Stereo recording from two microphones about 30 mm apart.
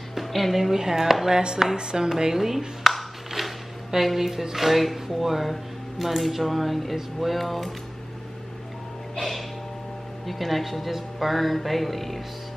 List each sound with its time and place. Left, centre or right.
0.1 s a woman's voice: centre
1.8 s speech: right; by 2.6 s centre
2.8 s a sound: centre
3.3 s speech: centre
10.2 s speech: centre